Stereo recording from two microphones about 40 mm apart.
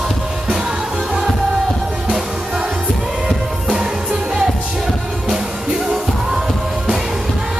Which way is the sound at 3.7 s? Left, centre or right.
Centre.